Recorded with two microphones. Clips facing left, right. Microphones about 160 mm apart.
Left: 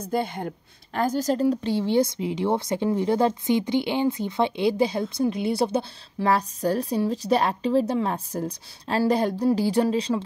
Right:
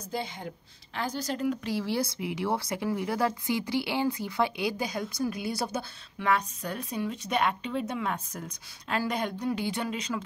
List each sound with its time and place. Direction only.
0.0 s speech: 55° left (ahead or behind)
0.9 s speech: 45° left (ahead or behind)